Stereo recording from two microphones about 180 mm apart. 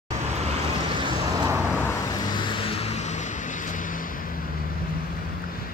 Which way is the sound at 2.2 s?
25° left (ahead or behind).